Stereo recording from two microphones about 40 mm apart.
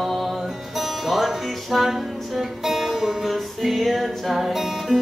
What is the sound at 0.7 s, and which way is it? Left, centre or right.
Music, centre.